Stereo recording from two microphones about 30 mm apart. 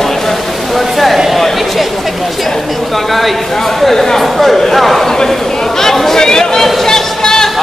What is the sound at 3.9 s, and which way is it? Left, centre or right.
Speech, centre.